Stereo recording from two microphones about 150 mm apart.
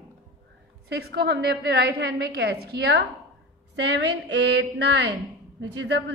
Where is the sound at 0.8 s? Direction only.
90° right.